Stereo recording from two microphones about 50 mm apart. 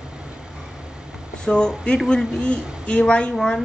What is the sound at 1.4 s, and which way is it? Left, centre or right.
Speech, centre.